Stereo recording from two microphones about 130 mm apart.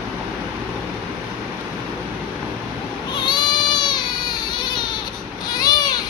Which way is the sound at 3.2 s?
35° left (ahead or behind).